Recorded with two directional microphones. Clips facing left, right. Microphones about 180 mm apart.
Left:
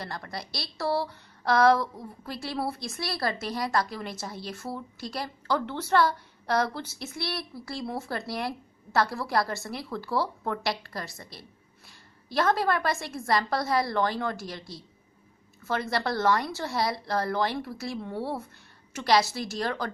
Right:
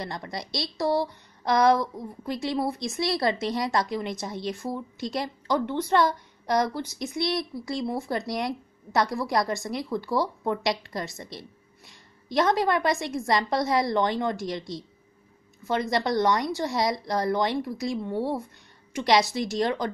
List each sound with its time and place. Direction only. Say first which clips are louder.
0.0 s a woman's voice: right 3 dB; 20° right (ahead or behind)